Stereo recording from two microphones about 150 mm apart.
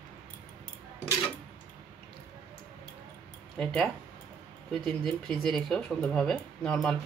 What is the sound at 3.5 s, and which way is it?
Speech, 5° left (ahead or behind).